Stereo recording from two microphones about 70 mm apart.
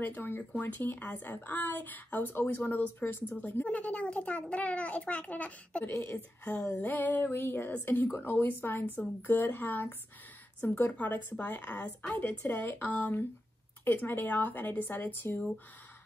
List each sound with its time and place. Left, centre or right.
0.0 s a woman's voice: left
5.9 s a woman's voice: left